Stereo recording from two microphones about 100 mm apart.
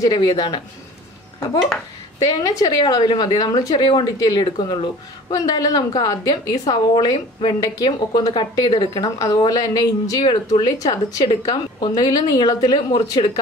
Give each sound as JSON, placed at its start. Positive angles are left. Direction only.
{"t": 0.0, "sound": "speech", "side_deg": 45}
{"t": 2.2, "sound": "a woman's voice", "side_deg": 35}
{"t": 2.8, "sound": "speech", "side_deg": 50}
{"t": 5.3, "sound": "a woman's voice", "side_deg": 35}
{"t": 9.0, "sound": "a woman's voice", "side_deg": 35}